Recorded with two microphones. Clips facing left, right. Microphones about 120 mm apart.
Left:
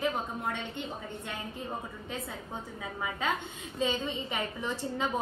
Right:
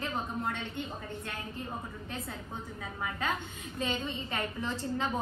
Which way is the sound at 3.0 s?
20° left (ahead or behind).